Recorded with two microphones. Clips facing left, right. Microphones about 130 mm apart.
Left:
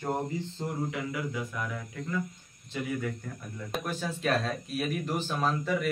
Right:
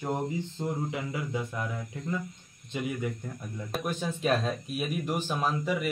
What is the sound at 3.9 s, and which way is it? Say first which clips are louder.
Speech: right 3 dB; 20° right (ahead or behind).